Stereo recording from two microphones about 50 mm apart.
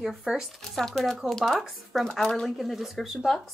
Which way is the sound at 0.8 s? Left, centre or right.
Centre.